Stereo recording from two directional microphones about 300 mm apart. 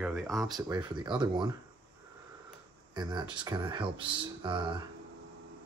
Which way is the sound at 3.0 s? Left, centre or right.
Centre.